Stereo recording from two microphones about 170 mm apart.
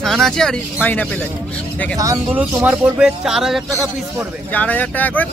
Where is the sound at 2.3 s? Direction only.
10° right (ahead or behind).